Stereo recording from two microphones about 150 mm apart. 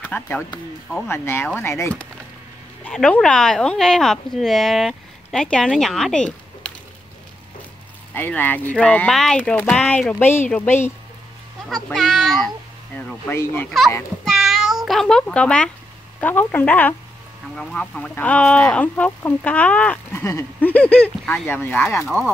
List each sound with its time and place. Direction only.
0.0 s speech: 10° left (ahead or behind)
8.1 s speech: 10° left (ahead or behind)
11.7 s speech: centre (ahead or behind)
12.9 s speech: 15° left (ahead or behind)
14.2 s meow: centre (ahead or behind)
16.2 s speech: 10° left (ahead or behind)
22.0 s speech: centre (ahead or behind)